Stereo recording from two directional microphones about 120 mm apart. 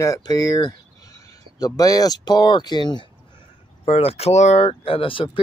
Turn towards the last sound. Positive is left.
turn(degrees=45)  # may be behind; listen again after turning